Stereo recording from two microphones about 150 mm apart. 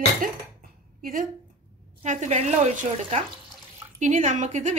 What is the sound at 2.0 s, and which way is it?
Speech, 50° right (ahead or behind).